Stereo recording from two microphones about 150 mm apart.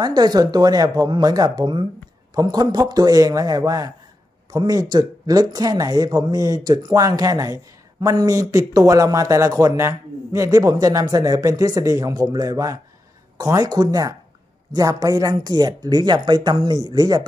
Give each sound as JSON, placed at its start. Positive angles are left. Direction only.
{"t": 0.0, "sound": "speech", "side_deg": -25}